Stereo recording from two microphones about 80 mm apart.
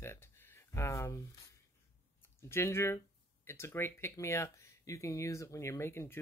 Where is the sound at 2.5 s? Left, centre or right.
Left.